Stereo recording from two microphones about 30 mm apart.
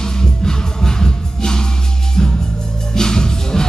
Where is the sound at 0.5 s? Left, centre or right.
Left.